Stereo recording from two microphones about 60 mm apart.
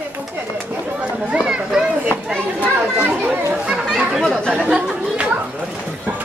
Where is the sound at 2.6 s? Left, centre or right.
Right.